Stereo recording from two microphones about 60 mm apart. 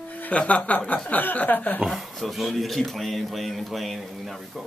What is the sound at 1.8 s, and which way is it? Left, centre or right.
Speech, centre.